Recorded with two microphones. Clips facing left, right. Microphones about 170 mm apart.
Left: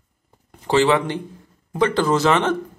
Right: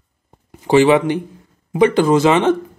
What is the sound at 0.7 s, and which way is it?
Speech, 15° right (ahead or behind).